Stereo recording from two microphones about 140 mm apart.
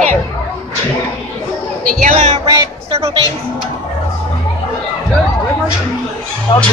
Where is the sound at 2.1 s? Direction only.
55° right (ahead or behind).